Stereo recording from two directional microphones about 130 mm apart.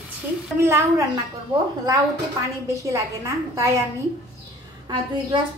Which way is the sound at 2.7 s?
25° right (ahead or behind).